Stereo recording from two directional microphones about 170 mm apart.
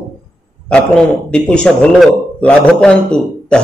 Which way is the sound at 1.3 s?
5° left (ahead or behind).